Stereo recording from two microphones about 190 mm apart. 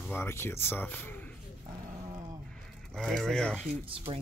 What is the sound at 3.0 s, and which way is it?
Speech, centre (ahead or behind).